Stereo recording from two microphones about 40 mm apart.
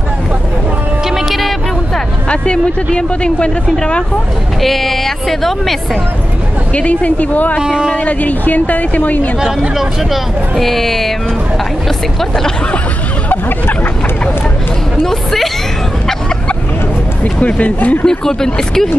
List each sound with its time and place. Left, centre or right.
1.1 s music: centre
2.2 s speech: left
4.6 s speech: centre
6.7 s a woman's voice: left
7.6 s speech: centre
7.9 s a woman's voice: left
9.4 s speech: centre
10.5 s speech: centre
15.0 s speech: centre
17.2 s speech: left
18.0 s speech: centre